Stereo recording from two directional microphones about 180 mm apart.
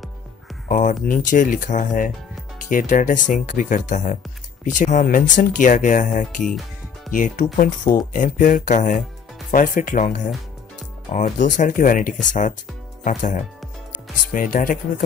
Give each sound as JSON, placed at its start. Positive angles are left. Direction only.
{"t": 0.7, "sound": "speech", "side_deg": 45}